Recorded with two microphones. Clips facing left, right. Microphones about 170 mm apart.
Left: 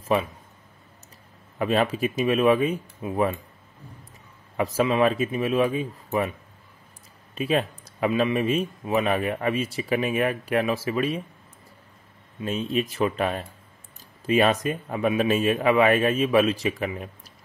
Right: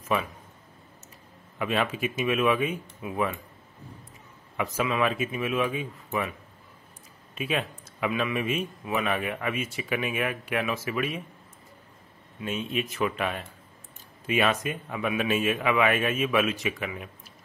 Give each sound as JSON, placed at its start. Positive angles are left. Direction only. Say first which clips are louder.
{"t": 1.6, "sound": "speech", "louder": "left 5 dB", "side_deg": 35}
{"t": 4.6, "sound": "speech", "louder": "left 5 dB", "side_deg": 35}
{"t": 7.3, "sound": "speech", "louder": "left 5 dB", "side_deg": 35}
{"t": 12.4, "sound": "speech", "louder": "left 4 dB", "side_deg": 35}